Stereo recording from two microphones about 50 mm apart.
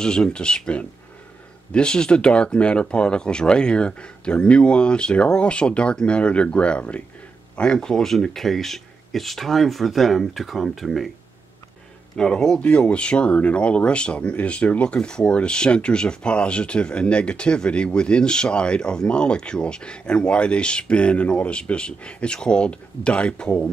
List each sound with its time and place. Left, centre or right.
0.0 s speech: centre
12.2 s speech: centre
12.6 s speech: left